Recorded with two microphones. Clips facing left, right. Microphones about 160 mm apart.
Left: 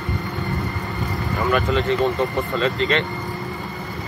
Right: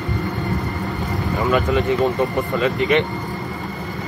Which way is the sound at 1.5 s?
15° right (ahead or behind).